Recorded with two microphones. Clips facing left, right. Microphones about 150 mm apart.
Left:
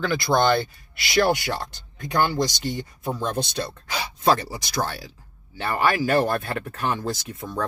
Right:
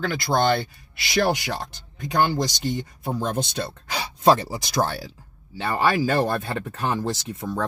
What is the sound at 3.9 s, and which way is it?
Speech, 30° right (ahead or behind).